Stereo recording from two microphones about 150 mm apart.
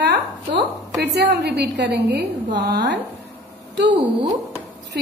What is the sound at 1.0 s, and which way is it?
A woman's voice, 90° right.